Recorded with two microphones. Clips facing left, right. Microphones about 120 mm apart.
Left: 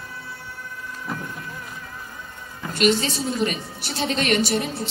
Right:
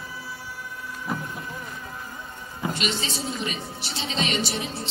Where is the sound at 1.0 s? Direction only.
10° right (ahead or behind).